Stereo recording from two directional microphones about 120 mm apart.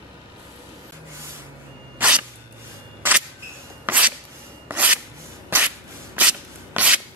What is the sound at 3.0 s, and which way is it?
Single-lens reflex camera, 15° right (ahead or behind).